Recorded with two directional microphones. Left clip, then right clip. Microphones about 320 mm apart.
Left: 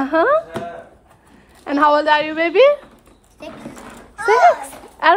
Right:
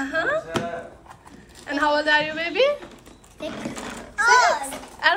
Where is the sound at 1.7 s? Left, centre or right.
Centre.